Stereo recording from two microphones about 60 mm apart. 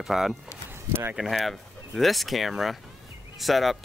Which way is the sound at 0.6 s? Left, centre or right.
Right.